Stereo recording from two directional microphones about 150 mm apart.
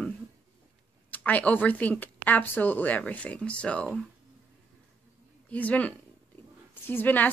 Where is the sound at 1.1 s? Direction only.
10° left (ahead or behind).